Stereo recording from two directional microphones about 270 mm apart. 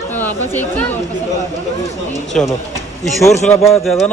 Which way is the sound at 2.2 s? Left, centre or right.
Centre.